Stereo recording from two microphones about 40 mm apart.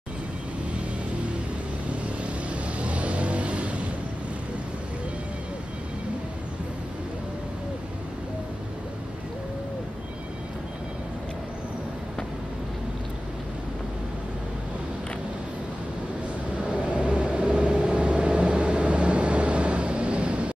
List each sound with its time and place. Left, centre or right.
2.5 s vehicle: right
16.7 s vehicle: right